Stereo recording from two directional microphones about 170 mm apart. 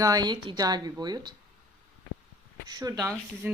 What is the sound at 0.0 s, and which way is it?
A woman's voice, 20° right (ahead or behind).